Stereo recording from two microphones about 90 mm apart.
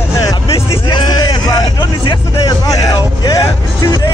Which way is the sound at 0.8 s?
50° left (ahead or behind).